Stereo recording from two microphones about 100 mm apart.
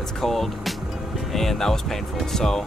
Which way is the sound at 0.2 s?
Centre (ahead or behind).